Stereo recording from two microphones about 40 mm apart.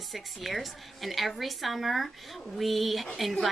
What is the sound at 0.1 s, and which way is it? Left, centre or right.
Speech, centre.